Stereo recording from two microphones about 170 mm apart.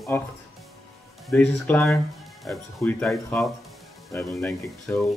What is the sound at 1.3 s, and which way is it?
Speech, 5° left (ahead or behind).